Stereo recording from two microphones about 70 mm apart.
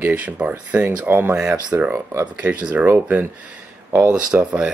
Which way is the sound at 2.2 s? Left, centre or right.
Centre.